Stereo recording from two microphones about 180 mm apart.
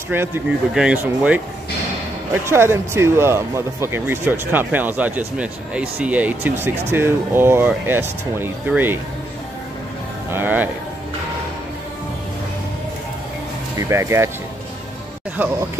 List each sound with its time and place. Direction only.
0.1 s speech: 10° right (ahead or behind)
10.3 s speech: 10° right (ahead or behind)
13.7 s speech: 15° right (ahead or behind)
15.3 s speech: 10° right (ahead or behind)